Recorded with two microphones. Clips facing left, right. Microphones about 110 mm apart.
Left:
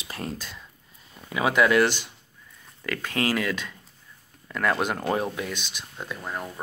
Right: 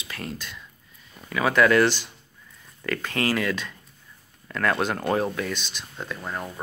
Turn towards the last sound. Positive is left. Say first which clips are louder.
# right 1 dB
turn(degrees=5)  # may be behind; listen again after turning